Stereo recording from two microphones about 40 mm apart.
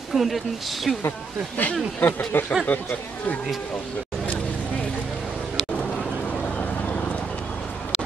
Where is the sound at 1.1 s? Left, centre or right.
Left.